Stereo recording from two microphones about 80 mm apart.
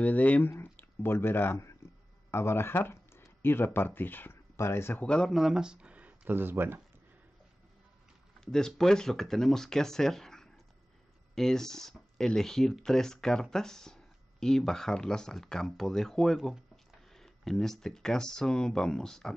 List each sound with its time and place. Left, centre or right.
0.0 s speech: centre
0.7 s speech: left
5.0 s speech: centre
5.3 s speech: centre; by 6.8 s right
8.4 s speech: centre